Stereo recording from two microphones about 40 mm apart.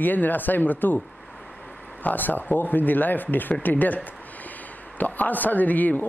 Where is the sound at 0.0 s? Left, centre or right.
Left.